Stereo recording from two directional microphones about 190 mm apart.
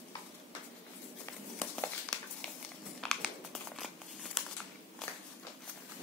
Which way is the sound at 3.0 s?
Centre (ahead or behind).